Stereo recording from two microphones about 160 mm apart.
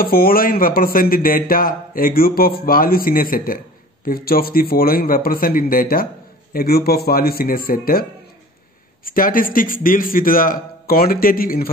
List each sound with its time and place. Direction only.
0.0 s a man's voice: 65° left (ahead or behind)
9.0 s a man's voice: 60° left (ahead or behind)